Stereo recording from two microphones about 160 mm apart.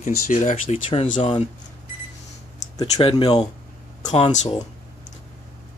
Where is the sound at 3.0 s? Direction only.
30° left (ahead or behind).